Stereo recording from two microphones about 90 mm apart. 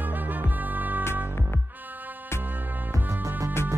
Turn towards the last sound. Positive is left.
turn(degrees=-35)  # may be behind; listen again after turning